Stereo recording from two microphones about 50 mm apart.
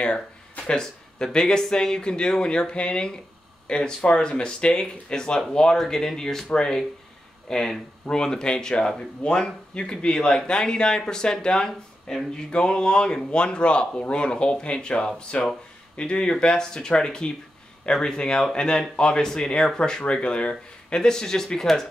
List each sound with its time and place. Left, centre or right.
0.7 s speech: centre